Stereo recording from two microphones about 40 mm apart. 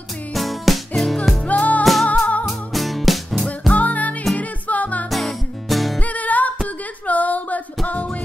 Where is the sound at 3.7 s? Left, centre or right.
Left.